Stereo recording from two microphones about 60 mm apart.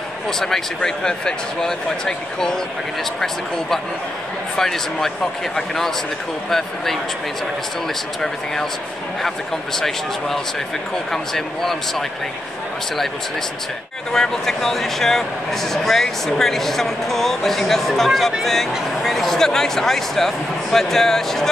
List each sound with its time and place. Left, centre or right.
0.8 s speech: centre
4.6 s speech: centre
9.8 s speech: centre
14.1 s speech: centre